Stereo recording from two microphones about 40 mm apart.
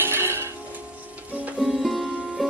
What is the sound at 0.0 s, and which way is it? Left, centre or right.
Music, right.